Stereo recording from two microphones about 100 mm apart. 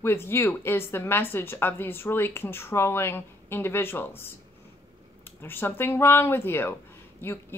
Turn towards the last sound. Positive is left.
turn(degrees=25)  # may be behind; listen again after turning